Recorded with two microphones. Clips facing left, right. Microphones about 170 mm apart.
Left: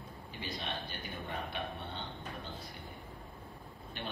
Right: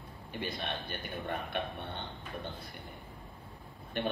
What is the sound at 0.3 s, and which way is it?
A man's voice, 55° right (ahead or behind).